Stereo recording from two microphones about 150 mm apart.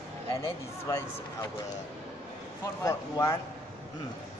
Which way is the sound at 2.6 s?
20° left (ahead or behind).